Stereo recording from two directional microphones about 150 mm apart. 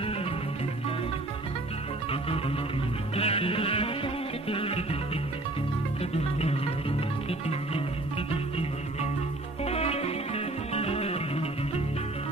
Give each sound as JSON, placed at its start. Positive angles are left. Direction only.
{"t": 3.2, "sound": "music", "side_deg": 40}
{"t": 7.2, "sound": "music", "side_deg": 40}
{"t": 9.7, "sound": "music", "side_deg": 45}